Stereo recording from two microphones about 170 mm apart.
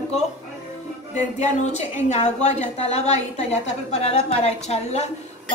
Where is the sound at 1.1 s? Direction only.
45° left (ahead or behind).